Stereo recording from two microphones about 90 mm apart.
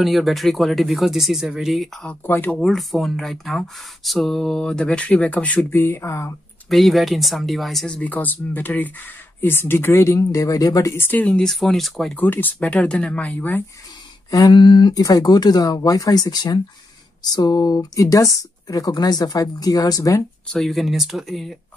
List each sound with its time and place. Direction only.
0.0 s speech: centre (ahead or behind)
2.0 s speech: 20° left (ahead or behind)
2.6 s speech: centre (ahead or behind); by 6.3 s 30° left (ahead or behind)
6.7 s speech: centre (ahead or behind)
8.0 s speech: 20° left (ahead or behind); by 11.0 s 40° left (ahead or behind)
11.0 s speech: 20° left (ahead or behind); by 12.2 s 5° left (ahead or behind)
12.2 s speech: 20° left (ahead or behind)
14.3 s speech: 55° left (ahead or behind); by 20.2 s 35° left (ahead or behind)
20.4 s speech: centre (ahead or behind)